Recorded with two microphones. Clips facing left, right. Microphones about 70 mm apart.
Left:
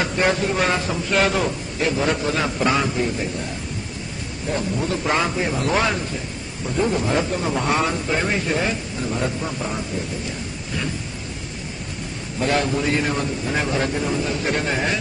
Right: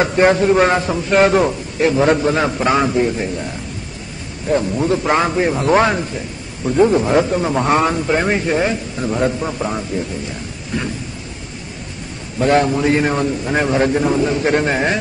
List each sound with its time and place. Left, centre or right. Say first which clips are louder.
0.0 s a man's voice: right 7 dB; right
4.6 s a man's voice: right 7 dB; right
9.6 s a man's voice: right 7 dB; centre
12.4 s a man's voice: right 7 dB; right